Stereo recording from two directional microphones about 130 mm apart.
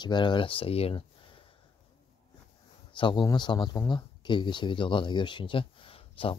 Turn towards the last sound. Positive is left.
turn(degrees=45)  # may be behind; listen again after turning